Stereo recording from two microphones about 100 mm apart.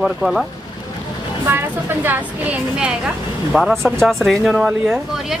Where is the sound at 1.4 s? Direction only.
20° right (ahead or behind).